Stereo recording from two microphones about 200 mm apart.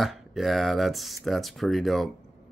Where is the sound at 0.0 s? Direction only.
Centre (ahead or behind).